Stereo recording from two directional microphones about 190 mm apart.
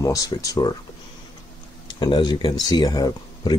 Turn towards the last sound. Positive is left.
turn(degrees=20)  # may be behind; listen again after turning